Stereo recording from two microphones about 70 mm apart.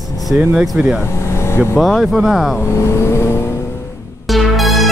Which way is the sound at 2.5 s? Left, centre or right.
Left.